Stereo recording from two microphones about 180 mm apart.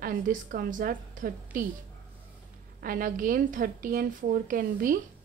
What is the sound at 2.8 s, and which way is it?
A woman's voice, 50° right (ahead or behind).